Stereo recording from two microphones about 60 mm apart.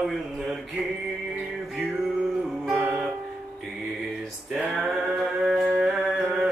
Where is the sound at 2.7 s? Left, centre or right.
Right.